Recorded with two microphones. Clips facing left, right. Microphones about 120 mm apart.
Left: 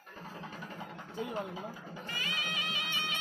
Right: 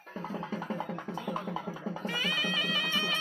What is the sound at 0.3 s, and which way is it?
Music, 90° right.